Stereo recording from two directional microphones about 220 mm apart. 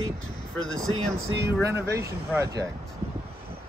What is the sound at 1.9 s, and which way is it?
Speech, 15° right (ahead or behind).